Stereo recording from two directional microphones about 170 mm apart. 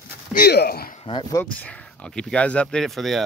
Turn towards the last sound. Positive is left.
turn(degrees=0)  # may be behind; listen again after turning